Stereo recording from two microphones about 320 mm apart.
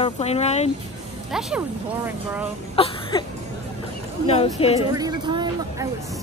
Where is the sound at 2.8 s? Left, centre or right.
Centre.